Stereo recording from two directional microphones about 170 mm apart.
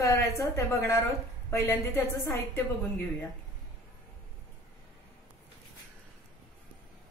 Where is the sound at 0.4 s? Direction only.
15° left (ahead or behind).